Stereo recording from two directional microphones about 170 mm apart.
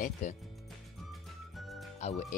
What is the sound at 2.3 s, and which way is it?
Speech, 50° left (ahead or behind).